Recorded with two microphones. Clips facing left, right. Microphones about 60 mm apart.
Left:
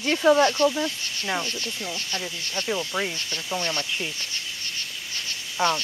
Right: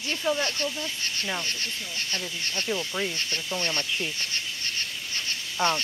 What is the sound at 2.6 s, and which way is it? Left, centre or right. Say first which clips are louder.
Speech: left 3 dB; left.